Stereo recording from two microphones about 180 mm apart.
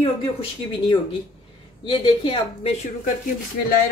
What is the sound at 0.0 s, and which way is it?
Speech, 30° left (ahead or behind).